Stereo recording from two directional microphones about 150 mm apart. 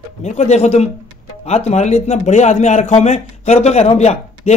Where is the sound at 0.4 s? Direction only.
45° left (ahead or behind).